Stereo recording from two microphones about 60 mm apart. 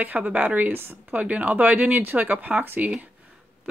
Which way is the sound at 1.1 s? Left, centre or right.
Right.